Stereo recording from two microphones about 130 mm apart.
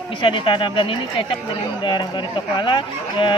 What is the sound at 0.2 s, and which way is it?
Speech, 40° left (ahead or behind).